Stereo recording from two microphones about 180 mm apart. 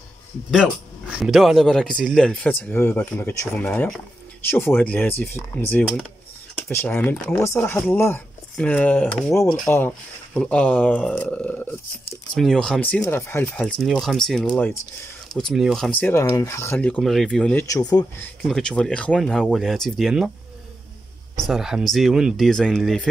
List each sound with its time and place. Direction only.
1.1 s speech: centre (ahead or behind)
17.6 s speech: 20° left (ahead or behind)
18.4 s speech: 5° left (ahead or behind)
21.5 s speech: 5° right (ahead or behind)